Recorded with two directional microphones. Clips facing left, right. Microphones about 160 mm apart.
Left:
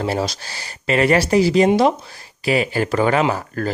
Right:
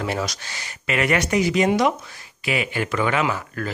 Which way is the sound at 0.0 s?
30° left (ahead or behind).